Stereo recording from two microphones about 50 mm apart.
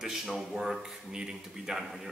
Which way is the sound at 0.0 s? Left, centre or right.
Centre.